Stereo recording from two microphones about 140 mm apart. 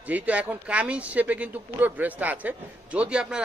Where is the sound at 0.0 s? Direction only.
10° right (ahead or behind).